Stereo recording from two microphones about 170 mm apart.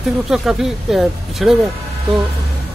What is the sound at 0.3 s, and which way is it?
Speech, 5° right (ahead or behind).